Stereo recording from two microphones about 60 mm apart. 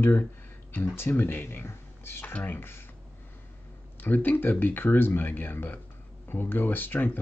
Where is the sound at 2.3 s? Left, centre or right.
Left.